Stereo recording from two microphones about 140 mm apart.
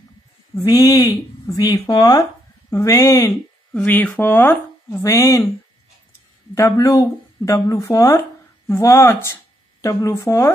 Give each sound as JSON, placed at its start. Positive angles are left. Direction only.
{"t": 0.6, "sound": "speech", "side_deg": 25}
{"t": 6.5, "sound": "speech", "side_deg": 20}